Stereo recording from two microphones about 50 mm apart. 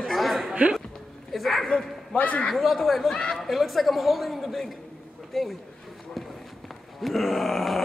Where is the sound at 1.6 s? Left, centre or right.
Centre.